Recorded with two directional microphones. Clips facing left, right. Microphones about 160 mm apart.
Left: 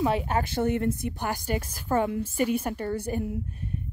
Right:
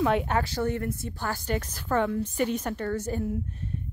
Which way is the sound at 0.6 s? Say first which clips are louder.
Left 3 dB; 20° left (ahead or behind).